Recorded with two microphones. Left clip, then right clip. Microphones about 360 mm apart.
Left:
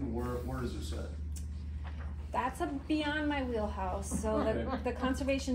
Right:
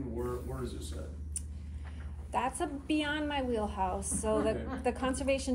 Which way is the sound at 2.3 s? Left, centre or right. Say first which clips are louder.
Right 1 dB; right.